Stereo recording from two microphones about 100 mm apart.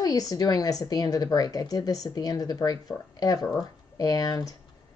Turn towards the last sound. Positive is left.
turn(degrees=40)  # may be behind; listen again after turning